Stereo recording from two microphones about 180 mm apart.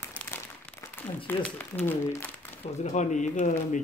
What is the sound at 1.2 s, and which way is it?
Speech, 10° left (ahead or behind).